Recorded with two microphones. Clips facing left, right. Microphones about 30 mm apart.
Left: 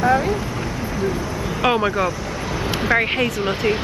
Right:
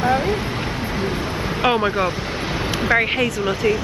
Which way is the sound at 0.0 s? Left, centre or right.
Right.